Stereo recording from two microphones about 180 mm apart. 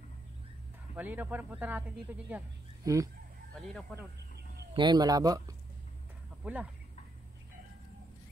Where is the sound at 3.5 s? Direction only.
Centre (ahead or behind).